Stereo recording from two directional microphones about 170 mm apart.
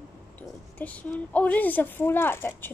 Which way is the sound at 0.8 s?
10° left (ahead or behind).